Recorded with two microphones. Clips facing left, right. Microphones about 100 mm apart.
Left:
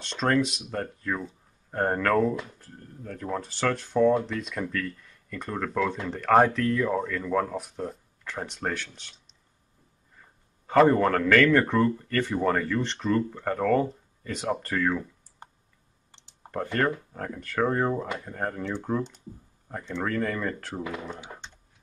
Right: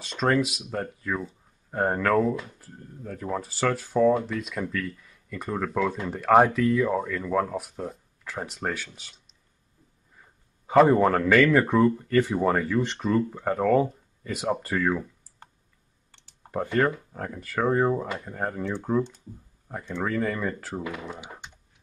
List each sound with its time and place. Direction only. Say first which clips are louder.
0.0 s speech: right 1 dB; 5° right (ahead or behind)
10.7 s speech: right 2 dB; 10° right (ahead or behind)
16.1 s computer keyboard: left 2 dB; 20° left (ahead or behind)
16.7 s speech: right 2 dB; 5° right (ahead or behind)
21.3 s computer keyboard: even; 10° right (ahead or behind)